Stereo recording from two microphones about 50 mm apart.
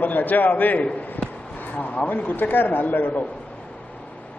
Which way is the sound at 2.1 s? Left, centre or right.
Left.